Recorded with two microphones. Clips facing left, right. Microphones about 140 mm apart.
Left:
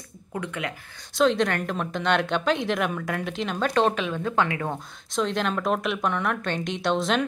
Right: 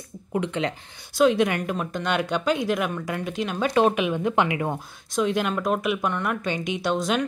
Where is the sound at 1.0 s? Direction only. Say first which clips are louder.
Right 2 dB; 5° right (ahead or behind).